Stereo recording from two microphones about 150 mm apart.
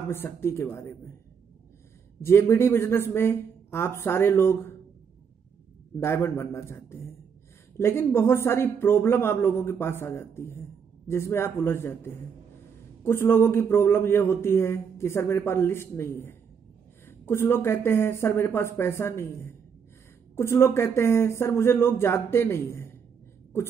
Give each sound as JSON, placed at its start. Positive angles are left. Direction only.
{"t": 0.1, "sound": "a man's voice", "side_deg": 15}
{"t": 2.2, "sound": "a man's voice", "side_deg": 15}
{"t": 5.9, "sound": "a man's voice", "side_deg": 15}